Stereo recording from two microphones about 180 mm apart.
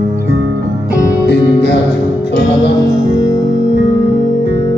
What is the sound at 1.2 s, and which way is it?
Music, 65° left (ahead or behind).